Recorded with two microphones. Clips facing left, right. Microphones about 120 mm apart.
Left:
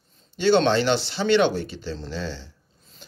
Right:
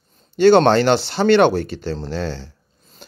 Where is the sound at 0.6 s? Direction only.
50° right (ahead or behind).